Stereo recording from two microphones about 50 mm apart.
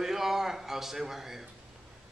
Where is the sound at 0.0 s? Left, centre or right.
Centre.